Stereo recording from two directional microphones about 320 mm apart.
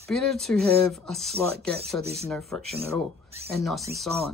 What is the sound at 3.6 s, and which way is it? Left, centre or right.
Speech, centre.